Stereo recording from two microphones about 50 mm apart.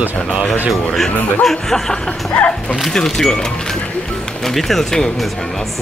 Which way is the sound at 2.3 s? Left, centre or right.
Left.